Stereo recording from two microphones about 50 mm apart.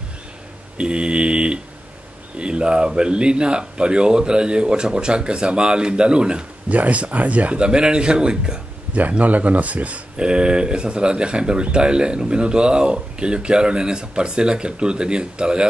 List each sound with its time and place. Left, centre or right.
0.7 s mantra: centre
2.3 s speech: centre
6.7 s speech: right
9.2 s speech: right
10.1 s speech: centre